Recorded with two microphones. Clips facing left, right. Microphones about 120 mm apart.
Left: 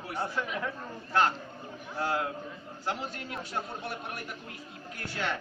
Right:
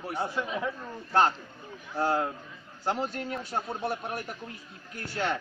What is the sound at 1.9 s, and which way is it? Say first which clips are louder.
Speech: right 4 dB; 35° right (ahead or behind).